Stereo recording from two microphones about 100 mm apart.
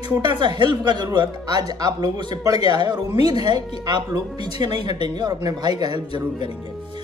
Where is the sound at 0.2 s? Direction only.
50° right (ahead or behind).